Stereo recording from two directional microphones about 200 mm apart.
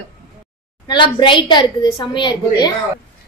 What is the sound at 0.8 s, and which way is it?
A woman's voice, 25° left (ahead or behind).